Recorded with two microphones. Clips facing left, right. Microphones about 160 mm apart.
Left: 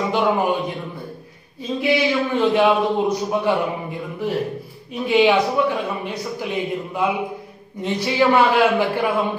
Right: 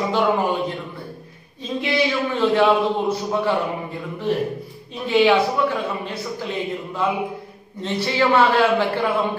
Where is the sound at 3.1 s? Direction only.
15° left (ahead or behind).